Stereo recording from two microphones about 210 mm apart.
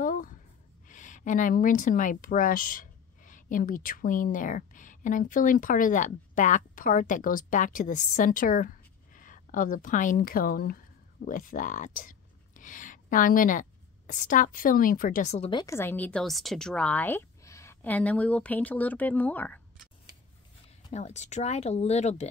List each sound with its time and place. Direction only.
0.0 s a sound: 40° left (ahead or behind)
0.8 s speech: 35° left (ahead or behind)
15.6 s a woman's voice: 10° left (ahead or behind)
20.9 s speech: 35° left (ahead or behind)